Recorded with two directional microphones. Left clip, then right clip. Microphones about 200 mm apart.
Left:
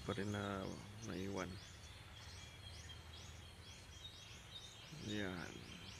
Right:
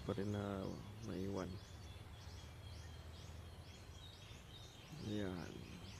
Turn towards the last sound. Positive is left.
turn(degrees=0)  # may be behind; listen again after turning